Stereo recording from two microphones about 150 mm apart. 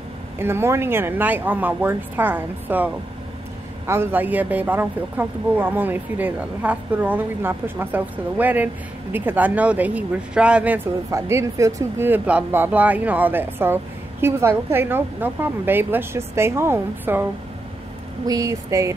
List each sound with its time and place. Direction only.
0.4 s speech: 15° right (ahead or behind)
11.1 s speech: 20° right (ahead or behind)